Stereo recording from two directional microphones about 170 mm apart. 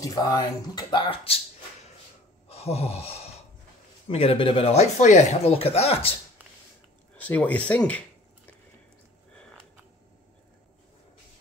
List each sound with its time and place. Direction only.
0.0 s speech: 20° left (ahead or behind)
2.5 s a sound: 35° left (ahead or behind)
4.1 s speech: 35° left (ahead or behind)
7.2 s speech: 10° left (ahead or behind)